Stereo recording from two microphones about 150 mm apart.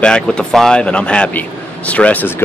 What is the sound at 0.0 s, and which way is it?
Speech, 5° left (ahead or behind).